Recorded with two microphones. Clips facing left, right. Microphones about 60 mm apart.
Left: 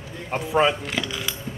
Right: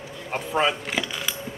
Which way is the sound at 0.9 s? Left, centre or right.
Centre.